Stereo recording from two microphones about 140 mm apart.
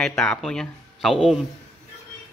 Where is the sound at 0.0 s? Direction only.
5° left (ahead or behind).